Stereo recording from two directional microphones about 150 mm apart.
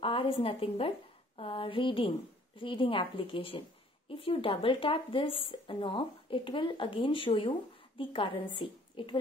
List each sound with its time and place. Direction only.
0.0 s a woman's voice: 35° left (ahead or behind)